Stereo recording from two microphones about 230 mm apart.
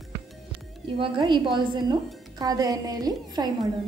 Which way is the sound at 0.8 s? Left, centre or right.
Right.